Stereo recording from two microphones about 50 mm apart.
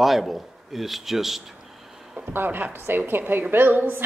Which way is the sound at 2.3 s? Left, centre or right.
Right.